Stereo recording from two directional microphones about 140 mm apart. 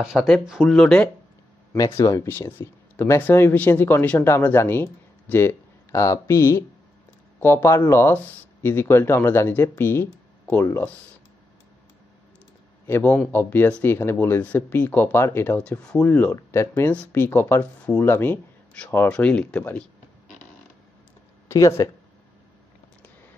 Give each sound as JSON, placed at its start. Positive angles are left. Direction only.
{"t": 0.0, "sound": "speech", "side_deg": -5}
{"t": 1.8, "sound": "speech", "side_deg": 25}
{"t": 2.2, "sound": "speech", "side_deg": 15}
{"t": 12.8, "sound": "a man's voice", "side_deg": 15}
{"t": 21.5, "sound": "speech", "side_deg": 20}